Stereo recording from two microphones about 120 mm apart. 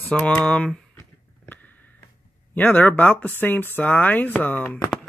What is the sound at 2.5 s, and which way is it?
Speech, 15° left (ahead or behind).